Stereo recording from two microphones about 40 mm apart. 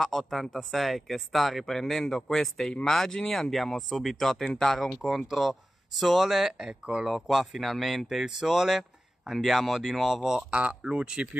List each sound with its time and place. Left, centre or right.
0.3 s speech: centre
4.9 s speech: centre
6.7 s speech: centre
7.1 s speech: centre
10.5 s speech: right
10.8 s speech: right